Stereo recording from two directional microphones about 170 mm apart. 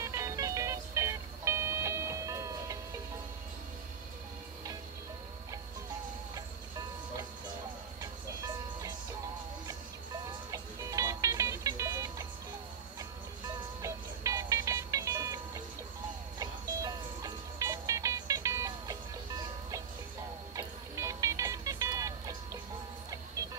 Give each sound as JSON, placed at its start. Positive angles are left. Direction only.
{"t": 0.0, "sound": "music", "side_deg": -15}
{"t": 10.5, "sound": "music", "side_deg": -20}
{"t": 13.8, "sound": "music", "side_deg": -20}